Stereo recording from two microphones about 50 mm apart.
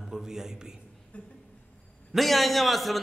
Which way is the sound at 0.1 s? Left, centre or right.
Centre.